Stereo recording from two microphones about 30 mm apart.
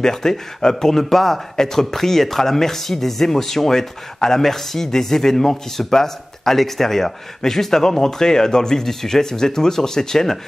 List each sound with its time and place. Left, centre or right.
0.0 s speech: centre